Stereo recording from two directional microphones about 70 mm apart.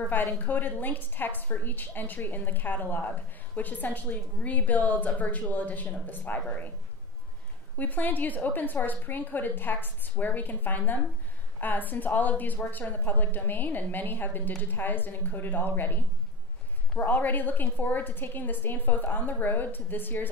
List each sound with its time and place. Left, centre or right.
0.1 s a woman's voice: left
7.7 s a woman's voice: left
17.0 s a woman's voice: left